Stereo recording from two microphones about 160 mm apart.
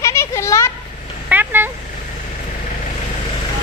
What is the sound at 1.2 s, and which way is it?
Cat, 10° right (ahead or behind).